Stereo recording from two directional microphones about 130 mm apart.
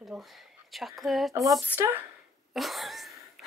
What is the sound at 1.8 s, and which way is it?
Speech, 15° right (ahead or behind).